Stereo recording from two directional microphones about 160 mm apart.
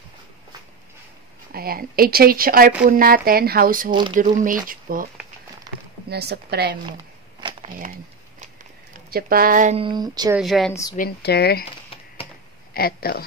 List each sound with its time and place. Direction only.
1.5 s speech: 70° right (ahead or behind)
6.0 s speech: 90° right
6.9 s a sound: 30° right (ahead or behind)
9.1 s speech: 65° right (ahead or behind)
9.8 s speech: 30° right (ahead or behind)
10.4 s a woman's voice: centre (ahead or behind)
10.7 s a woman's voice: 20° left (ahead or behind)
11.0 s speech: 85° left
12.7 s speech: 70° left (ahead or behind)